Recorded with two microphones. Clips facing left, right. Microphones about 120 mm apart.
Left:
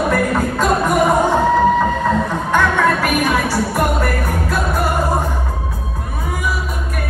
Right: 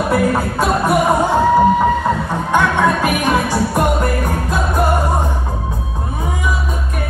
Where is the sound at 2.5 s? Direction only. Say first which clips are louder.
Right 1 dB; 15° right (ahead or behind).